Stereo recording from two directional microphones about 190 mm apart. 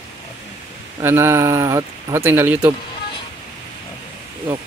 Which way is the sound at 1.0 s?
15° right (ahead or behind).